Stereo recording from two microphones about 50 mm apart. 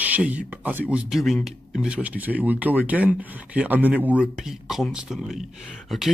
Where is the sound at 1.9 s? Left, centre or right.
Right.